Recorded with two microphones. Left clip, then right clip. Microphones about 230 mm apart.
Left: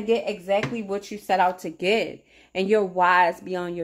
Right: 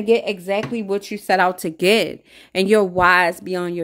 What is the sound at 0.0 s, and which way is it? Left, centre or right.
Speech, right.